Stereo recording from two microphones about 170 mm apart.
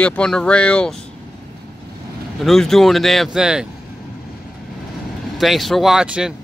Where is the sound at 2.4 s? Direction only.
Centre (ahead or behind).